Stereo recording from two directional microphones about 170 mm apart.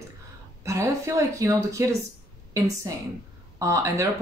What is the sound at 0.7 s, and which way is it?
Speech, 15° right (ahead or behind).